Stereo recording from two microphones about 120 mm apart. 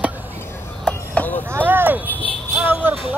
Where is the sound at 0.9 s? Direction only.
15° left (ahead or behind).